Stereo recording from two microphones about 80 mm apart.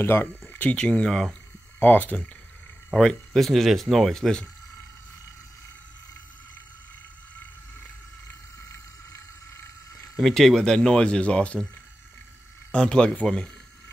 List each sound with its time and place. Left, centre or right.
0.0 s speech: left
0.4 s a sound: centre
0.7 s speech: centre
1.8 s speech: left
2.9 s speech: centre
8.3 s a sound: left
10.1 s speech: centre
12.7 s speech: centre